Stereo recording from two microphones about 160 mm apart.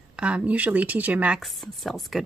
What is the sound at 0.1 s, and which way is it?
Speech, 5° right (ahead or behind).